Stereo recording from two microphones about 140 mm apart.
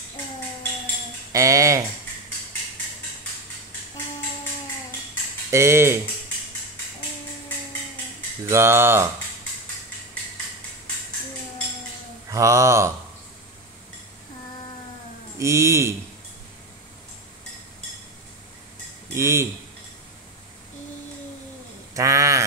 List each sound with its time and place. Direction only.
1.3 s speech: 25° right (ahead or behind)
5.5 s speech: 20° right (ahead or behind)
8.5 s speech: 20° right (ahead or behind)
12.3 s speech: 20° right (ahead or behind)
15.3 s speech: 20° right (ahead or behind)
19.1 s speech: 20° right (ahead or behind)
21.9 s speech: 25° right (ahead or behind)